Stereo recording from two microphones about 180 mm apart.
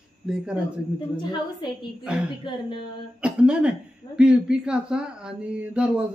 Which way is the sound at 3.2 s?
5° right (ahead or behind).